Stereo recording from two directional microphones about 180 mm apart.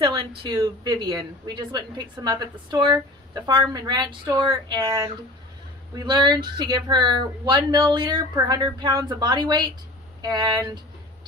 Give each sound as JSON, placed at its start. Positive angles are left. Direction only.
{"t": 0.0, "sound": "a woman's voice", "side_deg": -25}